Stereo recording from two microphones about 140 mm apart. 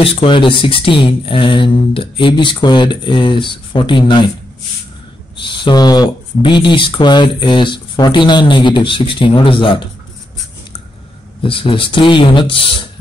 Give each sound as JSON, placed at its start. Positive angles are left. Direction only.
{"t": 0.0, "sound": "speech", "side_deg": 40}
{"t": 5.5, "sound": "speech", "side_deg": 35}
{"t": 11.4, "sound": "speech", "side_deg": 40}